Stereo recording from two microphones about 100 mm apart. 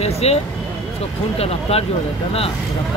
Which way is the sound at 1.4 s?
85° left.